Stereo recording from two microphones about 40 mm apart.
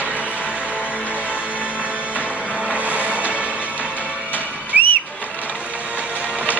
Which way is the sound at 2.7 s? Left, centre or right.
Right.